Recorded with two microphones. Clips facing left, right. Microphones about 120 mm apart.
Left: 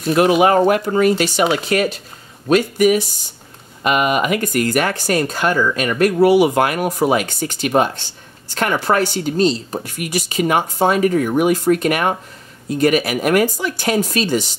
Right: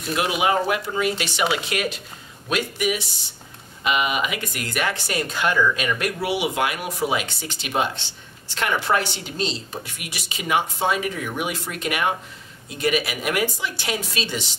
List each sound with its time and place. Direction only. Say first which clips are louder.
0.0 s speech: left 9 dB; 45° left (ahead or behind)